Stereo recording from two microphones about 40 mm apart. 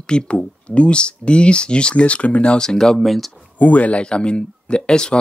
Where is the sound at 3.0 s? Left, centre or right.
Centre.